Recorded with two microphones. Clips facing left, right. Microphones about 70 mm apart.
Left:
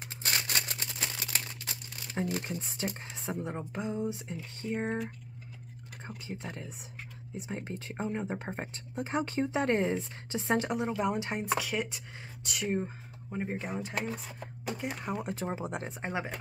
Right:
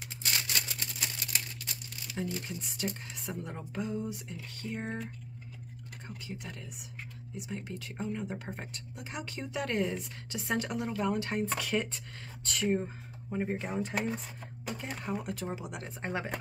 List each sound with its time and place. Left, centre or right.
0.2 s a sound: left
1.7 s a sound: left
2.4 s speech: left
6.0 s speech: left
11.5 s speech: centre
14.8 s speech: centre; by 15.9 s left
16.0 s speech: centre